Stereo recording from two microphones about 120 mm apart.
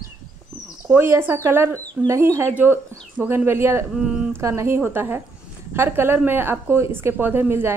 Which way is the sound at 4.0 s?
10° right (ahead or behind).